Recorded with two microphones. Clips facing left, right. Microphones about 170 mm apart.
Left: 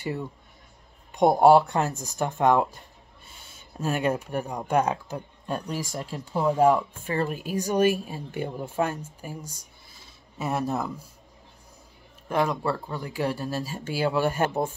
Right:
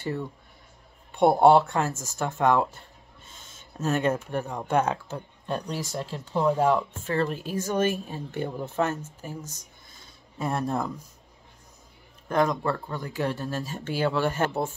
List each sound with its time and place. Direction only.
0.0 s speech: 15° left (ahead or behind)
12.3 s speech: 10° left (ahead or behind)